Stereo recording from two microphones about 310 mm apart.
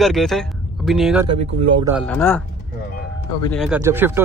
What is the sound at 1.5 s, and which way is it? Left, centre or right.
Speech, centre.